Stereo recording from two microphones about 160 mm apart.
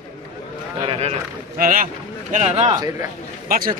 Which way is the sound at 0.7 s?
35° right (ahead or behind).